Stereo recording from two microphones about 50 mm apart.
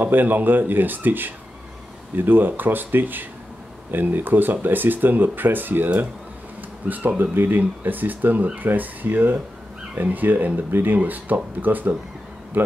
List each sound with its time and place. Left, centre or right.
0.0 s speech: right